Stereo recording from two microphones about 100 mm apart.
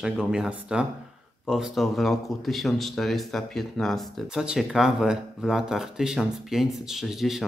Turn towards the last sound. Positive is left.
turn(degrees=-5)  # may be behind; listen again after turning